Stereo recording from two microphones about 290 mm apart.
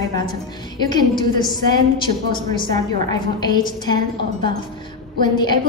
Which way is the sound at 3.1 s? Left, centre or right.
Centre.